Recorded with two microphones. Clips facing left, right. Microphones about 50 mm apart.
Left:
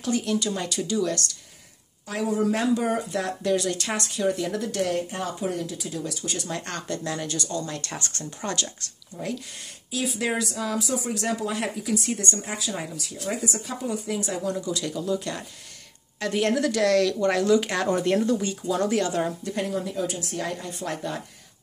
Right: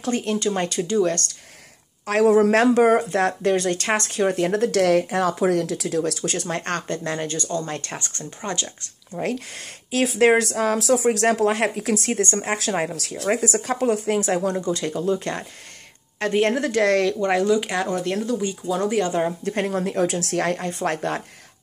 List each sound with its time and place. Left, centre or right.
0.0 s speech: right
2.0 s speech: right
4.6 s speech: right
6.4 s speech: right
7.0 s speech: right
8.4 s speech: right
9.1 s speech: right
17.5 s speech: centre
17.9 s speech: centre
18.4 s speech: centre
19.4 s speech: right